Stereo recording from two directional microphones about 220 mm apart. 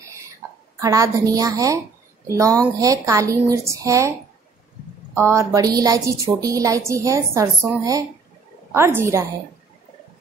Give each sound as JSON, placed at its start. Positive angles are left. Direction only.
{"t": 0.4, "sound": "a sound", "side_deg": -10}
{"t": 0.7, "sound": "a woman's voice", "side_deg": -15}
{"t": 5.1, "sound": "a woman's voice", "side_deg": -10}